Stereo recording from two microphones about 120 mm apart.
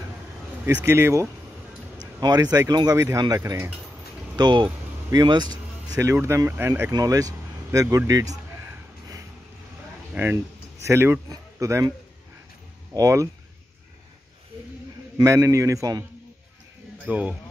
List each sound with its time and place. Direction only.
0.7 s a man's voice: 20° right (ahead or behind)
2.1 s speech: 35° right (ahead or behind)
4.4 s speech: 40° right (ahead or behind)
5.1 s vehicle: 35° right (ahead or behind)
6.1 s a man's voice: 25° right (ahead or behind)
6.9 s a man's voice: 30° right (ahead or behind)
10.1 s speech: 20° right (ahead or behind)
12.9 s a man's voice: 25° right (ahead or behind)
15.1 s a man's voice: 25° right (ahead or behind)
17.0 s speech: 10° right (ahead or behind)